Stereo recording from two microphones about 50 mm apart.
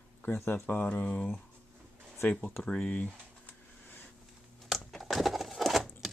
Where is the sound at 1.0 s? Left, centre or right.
Left.